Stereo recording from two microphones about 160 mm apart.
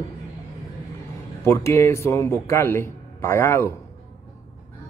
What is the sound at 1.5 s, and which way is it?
Speech, 15° left (ahead or behind).